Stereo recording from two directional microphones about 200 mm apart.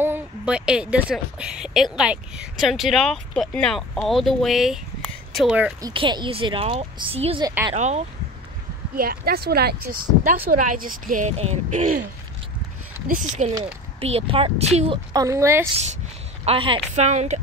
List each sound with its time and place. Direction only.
0.0 s speech: 10° right (ahead or behind)
5.8 s speech: 20° right (ahead or behind)
7.4 s speech: 20° right (ahead or behind)
7.7 s speech: 35° right (ahead or behind)
8.9 s speech: 50° right (ahead or behind)
13.1 s speech: 40° right (ahead or behind)
15.1 s speech: 15° right (ahead or behind)
16.4 s speech: 25° right (ahead or behind)